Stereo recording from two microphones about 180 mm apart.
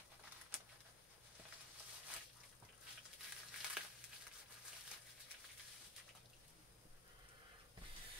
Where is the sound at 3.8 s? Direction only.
5° right (ahead or behind).